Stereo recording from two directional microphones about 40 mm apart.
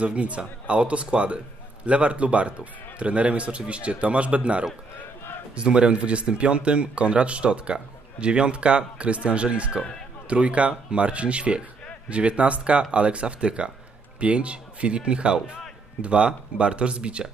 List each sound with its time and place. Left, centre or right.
0.0 s a man's voice: right